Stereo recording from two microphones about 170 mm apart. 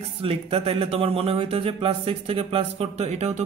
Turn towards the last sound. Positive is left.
turn(degrees=-40)  # may be behind; listen again after turning